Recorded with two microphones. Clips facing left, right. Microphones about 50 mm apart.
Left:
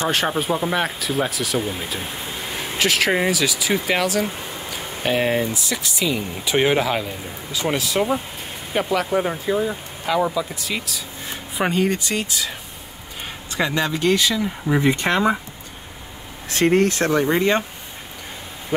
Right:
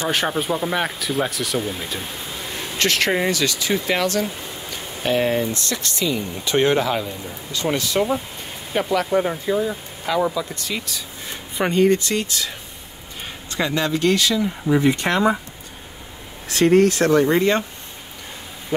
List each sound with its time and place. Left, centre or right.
0.1 s speech: centre
13.6 s speech: centre; by 15.3 s left
16.4 s speech: left
17.1 s speech: left